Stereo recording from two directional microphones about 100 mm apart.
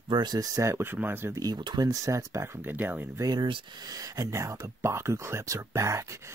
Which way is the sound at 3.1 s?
40° right (ahead or behind).